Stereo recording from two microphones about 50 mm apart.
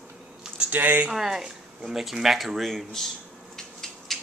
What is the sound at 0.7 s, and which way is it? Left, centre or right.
Speech, right.